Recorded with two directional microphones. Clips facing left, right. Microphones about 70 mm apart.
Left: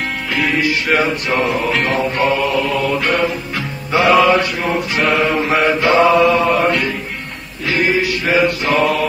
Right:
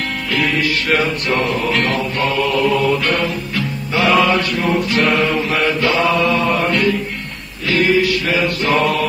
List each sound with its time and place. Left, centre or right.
0.3 s music: centre
4.1 s mantra: centre
4.4 s music: centre
5.5 s mantra: centre
6.2 s music: centre
7.7 s music: left
8.6 s mantra: centre